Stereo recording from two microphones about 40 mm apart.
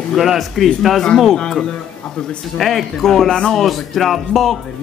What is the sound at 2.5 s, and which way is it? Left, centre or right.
A man's voice, centre.